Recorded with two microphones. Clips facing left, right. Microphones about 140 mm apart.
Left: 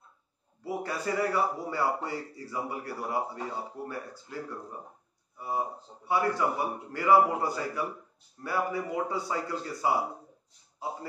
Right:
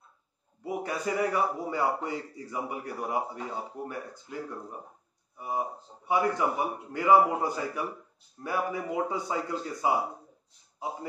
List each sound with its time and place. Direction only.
0.7 s a man's voice: 20° right (ahead or behind)